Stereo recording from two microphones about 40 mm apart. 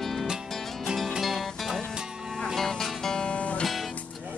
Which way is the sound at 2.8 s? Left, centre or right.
Centre.